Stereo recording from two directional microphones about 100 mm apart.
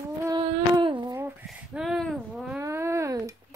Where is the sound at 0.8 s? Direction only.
50° right (ahead or behind).